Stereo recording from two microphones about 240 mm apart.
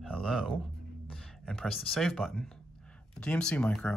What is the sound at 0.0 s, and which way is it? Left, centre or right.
Speech, centre.